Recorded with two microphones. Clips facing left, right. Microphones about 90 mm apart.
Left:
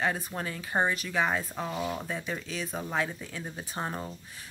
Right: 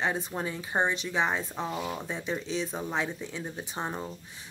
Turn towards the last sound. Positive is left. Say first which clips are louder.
# right 1 dB
turn(degrees=-15)  # may be behind; listen again after turning